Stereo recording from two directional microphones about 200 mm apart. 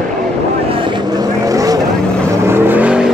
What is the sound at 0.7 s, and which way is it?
Vehicle, 25° right (ahead or behind).